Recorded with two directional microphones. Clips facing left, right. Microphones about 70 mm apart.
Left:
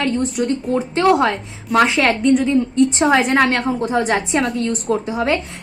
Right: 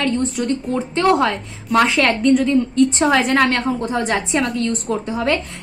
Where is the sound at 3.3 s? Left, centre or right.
Left.